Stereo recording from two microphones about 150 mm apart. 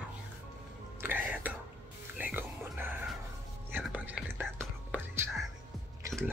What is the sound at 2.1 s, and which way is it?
Music, 10° right (ahead or behind).